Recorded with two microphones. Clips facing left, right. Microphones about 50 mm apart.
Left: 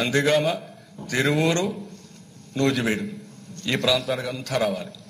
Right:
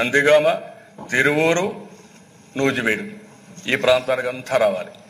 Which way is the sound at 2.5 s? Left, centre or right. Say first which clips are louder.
Right 2 dB; right.